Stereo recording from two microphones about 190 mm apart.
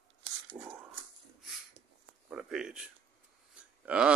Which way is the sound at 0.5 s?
15° right (ahead or behind).